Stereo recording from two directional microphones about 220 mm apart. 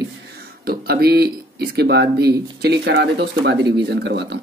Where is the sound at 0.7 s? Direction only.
45° right (ahead or behind).